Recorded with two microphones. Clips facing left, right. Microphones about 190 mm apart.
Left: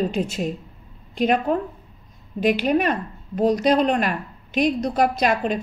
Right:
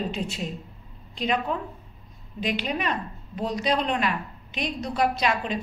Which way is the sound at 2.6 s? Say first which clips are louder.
Left 8 dB; 50° left (ahead or behind).